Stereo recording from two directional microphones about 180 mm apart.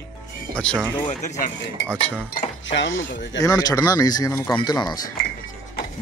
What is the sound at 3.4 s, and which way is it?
Speech, 20° left (ahead or behind).